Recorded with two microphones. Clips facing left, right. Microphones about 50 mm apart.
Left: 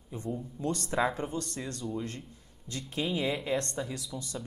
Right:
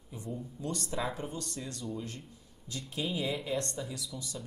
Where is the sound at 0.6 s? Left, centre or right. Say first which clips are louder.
Left 6 dB; left.